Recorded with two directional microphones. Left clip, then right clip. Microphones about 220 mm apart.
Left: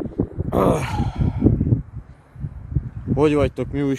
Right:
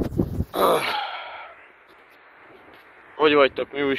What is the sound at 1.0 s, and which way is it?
Sigh, 15° left (ahead or behind).